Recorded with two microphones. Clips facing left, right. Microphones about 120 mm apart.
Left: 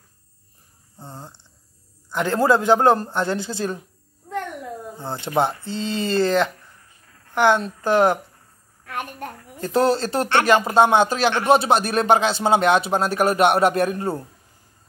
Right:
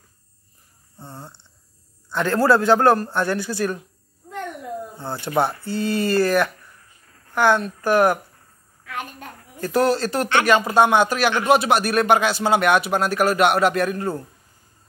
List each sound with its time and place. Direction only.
0.9 s speech: 15° left (ahead or behind)
4.9 s speech: 20° left (ahead or behind)
8.8 s a child's voice: 50° left (ahead or behind)
9.6 s speech: 25° left (ahead or behind)